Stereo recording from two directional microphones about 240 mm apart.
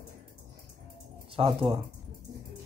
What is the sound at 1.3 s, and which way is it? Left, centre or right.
Speech, right.